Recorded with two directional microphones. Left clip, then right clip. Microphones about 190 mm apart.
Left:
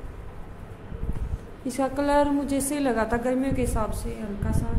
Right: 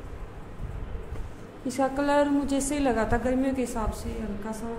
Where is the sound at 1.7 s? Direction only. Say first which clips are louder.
Left 1 dB; 15° left (ahead or behind).